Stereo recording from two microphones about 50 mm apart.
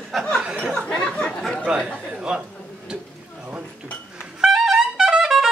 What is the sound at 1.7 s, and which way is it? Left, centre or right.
Speech, centre.